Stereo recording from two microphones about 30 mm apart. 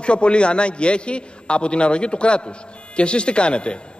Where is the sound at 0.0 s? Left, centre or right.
Left.